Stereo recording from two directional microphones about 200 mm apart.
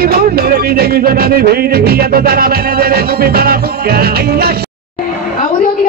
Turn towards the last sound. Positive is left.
turn(degrees=-50)  # may be behind; listen again after turning